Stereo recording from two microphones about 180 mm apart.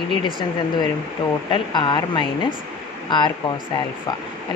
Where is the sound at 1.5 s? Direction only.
25° left (ahead or behind).